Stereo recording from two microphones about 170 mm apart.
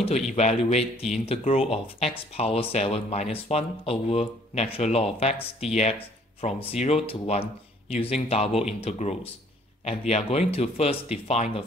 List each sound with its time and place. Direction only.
0.0 s speech: 40° left (ahead or behind)